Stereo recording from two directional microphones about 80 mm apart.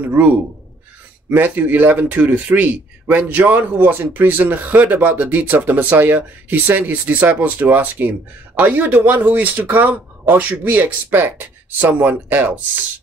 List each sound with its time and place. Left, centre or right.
0.0 s speech: centre
1.3 s speech: right